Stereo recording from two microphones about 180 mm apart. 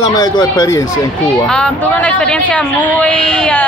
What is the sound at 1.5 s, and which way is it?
Speech, 5° left (ahead or behind).